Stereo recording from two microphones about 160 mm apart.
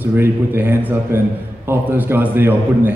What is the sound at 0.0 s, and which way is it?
A man's voice, 10° right (ahead or behind).